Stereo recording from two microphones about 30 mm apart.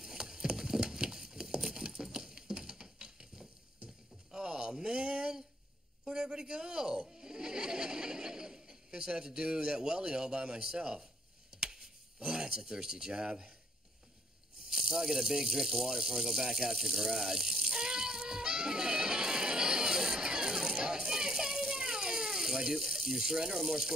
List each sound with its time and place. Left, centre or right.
0.0 s horse: centre
0.6 s a sound: centre
6.0 s speech: right
11.7 s a sound: right
13.1 s speech: right
14.7 s speech: centre
17.3 s rattle: centre
20.7 s a sound: right
21.1 s rattle: centre
21.7 s ratchet: right
22.8 s speech: centre
23.5 s speech: centre